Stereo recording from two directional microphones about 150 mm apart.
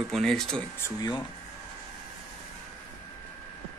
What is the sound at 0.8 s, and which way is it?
Speech, 25° left (ahead or behind).